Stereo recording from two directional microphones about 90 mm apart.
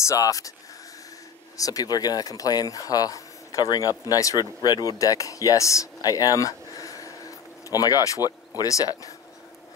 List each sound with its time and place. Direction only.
0.0 s speech: 35° left (ahead or behind)
1.6 s speech: 40° left (ahead or behind)